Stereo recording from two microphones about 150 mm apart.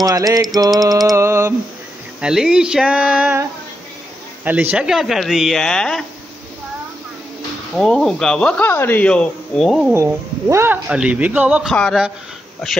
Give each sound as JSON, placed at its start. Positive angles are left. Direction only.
{"t": 0.0, "sound": "a sound", "side_deg": -25}
{"t": 2.2, "sound": "speech", "side_deg": -5}
{"t": 4.5, "sound": "speech", "side_deg": -10}
{"t": 7.7, "sound": "speech", "side_deg": 5}
{"t": 9.9, "sound": "speech", "side_deg": -15}